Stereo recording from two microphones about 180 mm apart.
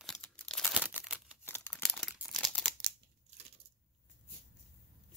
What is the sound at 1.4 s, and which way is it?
Crumpling, 10° left (ahead or behind).